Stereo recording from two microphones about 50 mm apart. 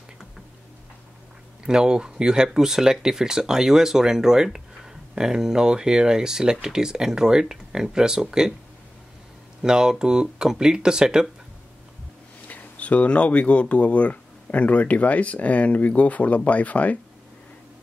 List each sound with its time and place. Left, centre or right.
1.6 s speech: centre
9.6 s speech: centre
12.4 s speech: left